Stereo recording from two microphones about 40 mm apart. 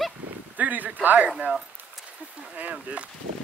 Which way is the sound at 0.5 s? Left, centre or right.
Right.